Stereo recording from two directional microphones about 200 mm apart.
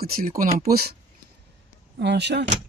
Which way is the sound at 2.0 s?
60° right (ahead or behind).